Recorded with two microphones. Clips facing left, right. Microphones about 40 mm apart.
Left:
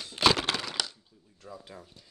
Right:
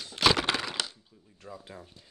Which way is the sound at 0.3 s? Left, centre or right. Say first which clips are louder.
Right 2 dB; centre.